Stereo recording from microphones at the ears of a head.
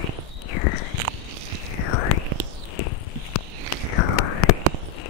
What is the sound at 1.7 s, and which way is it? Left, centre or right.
Whispering, left.